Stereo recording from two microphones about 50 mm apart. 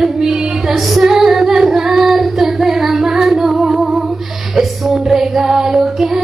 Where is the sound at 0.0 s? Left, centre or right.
Centre.